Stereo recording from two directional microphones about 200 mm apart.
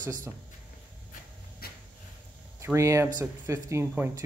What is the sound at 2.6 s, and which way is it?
Speech, 15° right (ahead or behind).